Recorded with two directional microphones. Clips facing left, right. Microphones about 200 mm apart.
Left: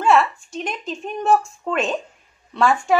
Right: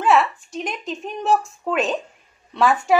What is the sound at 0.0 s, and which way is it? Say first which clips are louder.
A woman's voice: left 1 dB; centre (ahead or behind).